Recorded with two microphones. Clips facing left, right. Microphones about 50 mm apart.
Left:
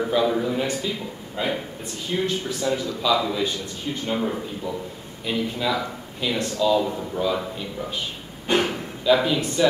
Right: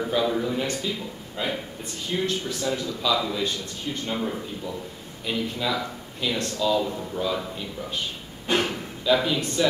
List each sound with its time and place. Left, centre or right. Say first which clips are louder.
0.0 s a man's voice: left 3 dB; centre